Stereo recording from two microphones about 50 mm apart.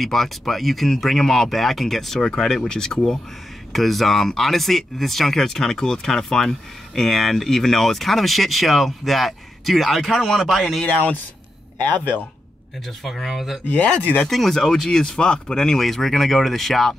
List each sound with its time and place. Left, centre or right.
0.0 s speech: centre
10.9 s speech: left
12.8 s speech: centre
13.7 s speech: left
14.2 s speech: centre